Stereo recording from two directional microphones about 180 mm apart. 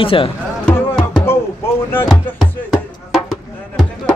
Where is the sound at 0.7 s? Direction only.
Centre (ahead or behind).